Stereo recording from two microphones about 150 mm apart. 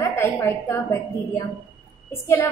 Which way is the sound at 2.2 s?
20° left (ahead or behind).